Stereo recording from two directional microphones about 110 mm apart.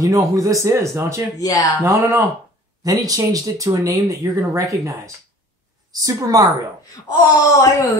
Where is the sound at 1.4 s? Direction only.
35° left (ahead or behind).